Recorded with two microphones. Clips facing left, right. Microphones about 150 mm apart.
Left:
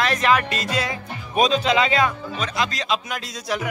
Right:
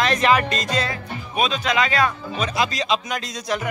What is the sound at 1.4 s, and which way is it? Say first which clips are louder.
Speech: left 3 dB; 30° left (ahead or behind).